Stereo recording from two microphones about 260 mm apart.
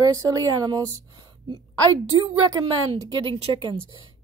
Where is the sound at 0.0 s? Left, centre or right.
Centre.